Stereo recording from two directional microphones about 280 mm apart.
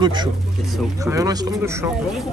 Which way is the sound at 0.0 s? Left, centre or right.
Centre.